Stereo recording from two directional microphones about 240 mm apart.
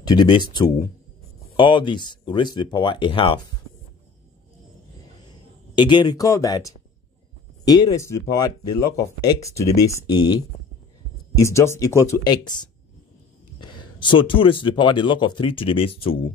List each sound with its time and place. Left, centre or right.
0.0 s speech: centre
5.8 s speech: centre